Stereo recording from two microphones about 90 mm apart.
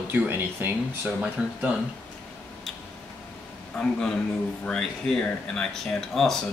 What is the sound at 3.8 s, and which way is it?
A man's voice, 10° left (ahead or behind).